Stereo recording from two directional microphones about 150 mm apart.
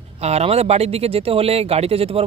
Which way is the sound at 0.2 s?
45° right (ahead or behind).